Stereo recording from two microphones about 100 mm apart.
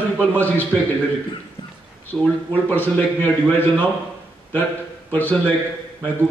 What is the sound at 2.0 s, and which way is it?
A man's voice, 20° left (ahead or behind).